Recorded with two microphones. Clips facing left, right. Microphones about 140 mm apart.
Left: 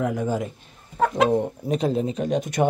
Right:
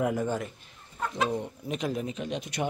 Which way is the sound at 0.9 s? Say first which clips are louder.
Left 10 dB; 85° left.